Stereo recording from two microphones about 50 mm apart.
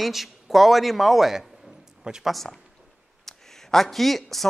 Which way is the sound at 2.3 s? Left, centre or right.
Centre.